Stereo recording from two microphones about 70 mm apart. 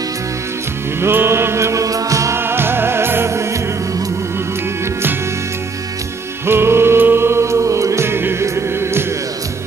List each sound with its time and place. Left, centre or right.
1.0 s music: right
2.3 s music: right
6.4 s music: right